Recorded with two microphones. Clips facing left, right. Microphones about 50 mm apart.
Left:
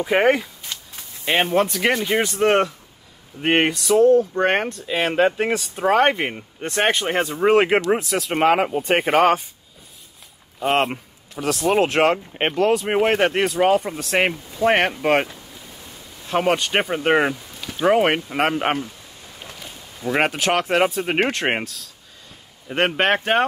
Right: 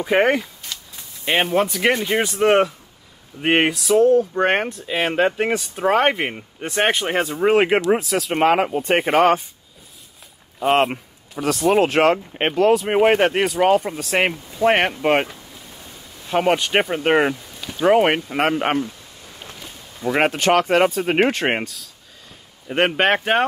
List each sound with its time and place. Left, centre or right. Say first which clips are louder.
0.0 s speech: even; centre
0.7 s a sound: even; left
1.2 s speech: even; centre
10.6 s speech: right 2 dB; centre
16.3 s speech: right 1 dB; centre
20.1 s speech: right 3 dB; centre